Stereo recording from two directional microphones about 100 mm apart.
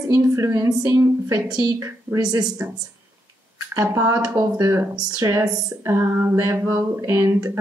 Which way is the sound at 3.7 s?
30° right (ahead or behind).